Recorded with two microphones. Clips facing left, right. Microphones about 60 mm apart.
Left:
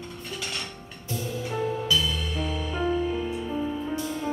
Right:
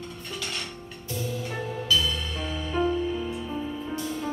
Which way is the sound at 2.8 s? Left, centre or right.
Centre.